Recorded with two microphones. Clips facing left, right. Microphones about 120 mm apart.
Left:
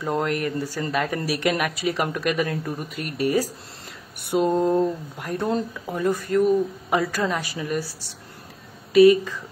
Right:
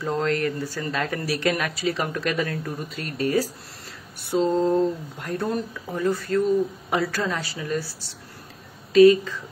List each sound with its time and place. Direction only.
0.0 s speech: 15° left (ahead or behind)
8.9 s speech: 15° left (ahead or behind)